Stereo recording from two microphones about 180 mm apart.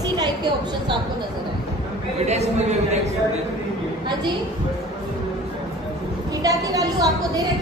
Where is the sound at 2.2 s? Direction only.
40° right (ahead or behind).